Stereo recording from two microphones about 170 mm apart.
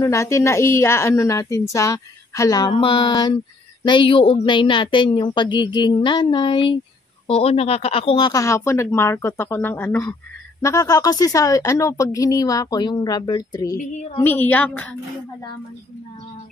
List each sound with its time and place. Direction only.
0.0 s speech: 15° left (ahead or behind)